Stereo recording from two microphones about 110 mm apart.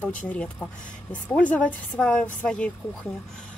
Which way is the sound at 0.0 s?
15° left (ahead or behind).